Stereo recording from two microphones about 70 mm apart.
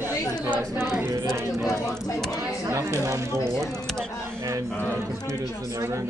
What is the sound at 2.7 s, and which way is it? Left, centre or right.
Speech, right.